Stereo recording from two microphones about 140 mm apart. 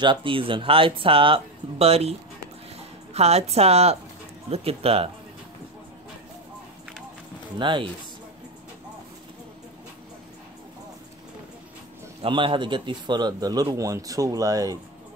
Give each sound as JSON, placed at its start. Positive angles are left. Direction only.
{"t": 0.0, "sound": "a woman's voice", "side_deg": -35}
{"t": 7.5, "sound": "speech", "side_deg": -35}
{"t": 12.2, "sound": "a man's voice", "side_deg": -40}